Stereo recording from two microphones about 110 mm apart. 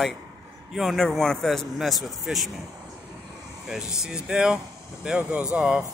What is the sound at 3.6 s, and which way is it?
Speech, 5° right (ahead or behind).